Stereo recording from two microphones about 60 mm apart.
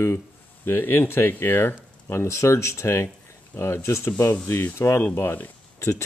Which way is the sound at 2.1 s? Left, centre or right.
Left.